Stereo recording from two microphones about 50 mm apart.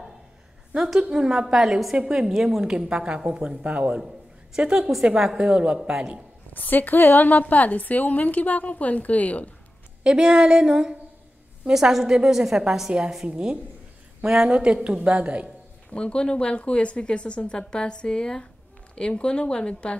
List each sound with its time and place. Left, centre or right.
0.7 s a woman's voice: centre
1.0 s a woman's voice: centre
4.7 s a woman's voice: centre
6.5 s a woman's voice: left
10.0 s a woman's voice: centre
14.2 s speech: centre
15.9 s a woman's voice: centre